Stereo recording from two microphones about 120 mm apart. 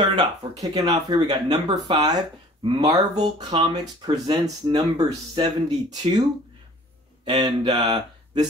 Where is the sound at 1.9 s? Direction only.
45° right (ahead or behind).